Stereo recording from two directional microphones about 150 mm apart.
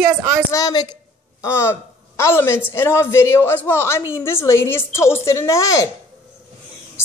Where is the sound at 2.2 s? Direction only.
15° left (ahead or behind).